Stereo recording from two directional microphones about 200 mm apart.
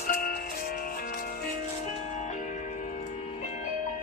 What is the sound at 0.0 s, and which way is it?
Music, 45° left (ahead or behind).